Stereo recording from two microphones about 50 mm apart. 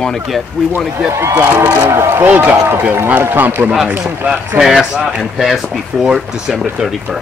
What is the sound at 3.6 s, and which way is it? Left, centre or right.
Speech, right.